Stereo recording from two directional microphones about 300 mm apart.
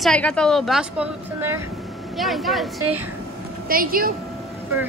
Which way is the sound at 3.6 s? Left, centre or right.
Right.